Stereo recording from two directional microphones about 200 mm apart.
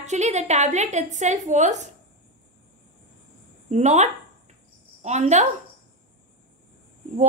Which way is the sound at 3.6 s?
35° right (ahead or behind).